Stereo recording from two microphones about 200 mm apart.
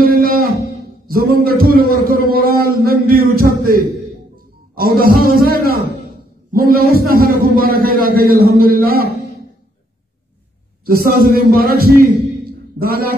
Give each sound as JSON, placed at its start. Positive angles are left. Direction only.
{"t": 0.0, "sound": "music", "side_deg": -45}
{"t": 1.0, "sound": "a man's voice", "side_deg": -50}
{"t": 3.2, "sound": "a sound", "side_deg": -90}
{"t": 3.4, "sound": "a man's voice", "side_deg": -45}
{"t": 10.9, "sound": "a man's voice", "side_deg": -50}